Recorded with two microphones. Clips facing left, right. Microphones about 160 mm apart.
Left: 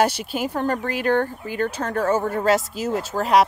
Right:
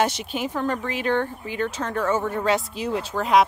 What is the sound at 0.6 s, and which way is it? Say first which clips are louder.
Speech: left 2 dB; 40° left (ahead or behind).